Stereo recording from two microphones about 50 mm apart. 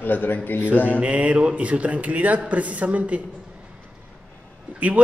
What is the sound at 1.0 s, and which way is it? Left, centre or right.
A man's voice, right.